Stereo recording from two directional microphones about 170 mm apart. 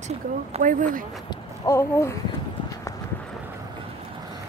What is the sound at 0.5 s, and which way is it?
Speech, 50° right (ahead or behind).